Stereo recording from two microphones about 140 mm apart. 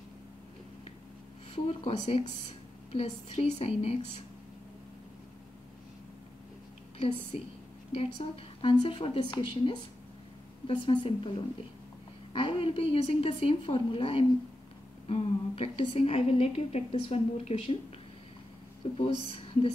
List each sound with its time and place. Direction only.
1.5 s a woman's voice: 45° left (ahead or behind)
7.9 s a woman's voice: 45° left (ahead or behind)
12.3 s a woman's voice: 40° left (ahead or behind)
18.9 s a woman's voice: 40° left (ahead or behind)